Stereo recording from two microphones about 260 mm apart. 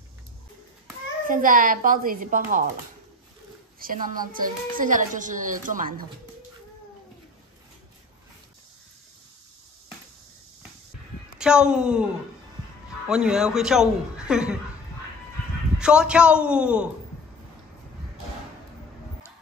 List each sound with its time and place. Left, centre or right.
1.2 s speech: right
3.8 s speech: right
11.3 s a man's voice: centre
13.1 s a man's voice: centre
15.8 s a man's voice: centre